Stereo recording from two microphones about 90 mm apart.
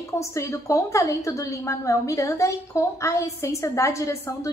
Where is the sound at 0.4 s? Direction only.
35° left (ahead or behind).